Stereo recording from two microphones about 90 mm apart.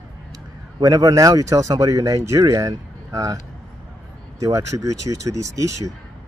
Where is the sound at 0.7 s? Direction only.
50° right (ahead or behind).